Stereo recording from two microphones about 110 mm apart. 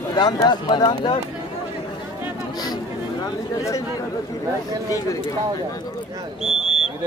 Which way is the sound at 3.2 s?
30° left (ahead or behind).